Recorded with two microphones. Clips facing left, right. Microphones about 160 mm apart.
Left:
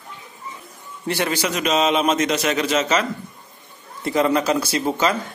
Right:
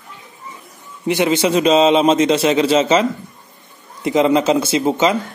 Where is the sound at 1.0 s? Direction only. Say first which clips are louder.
Right 7 dB; 15° right (ahead or behind).